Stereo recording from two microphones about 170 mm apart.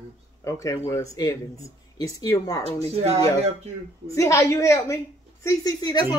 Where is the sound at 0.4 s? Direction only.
20° left (ahead or behind).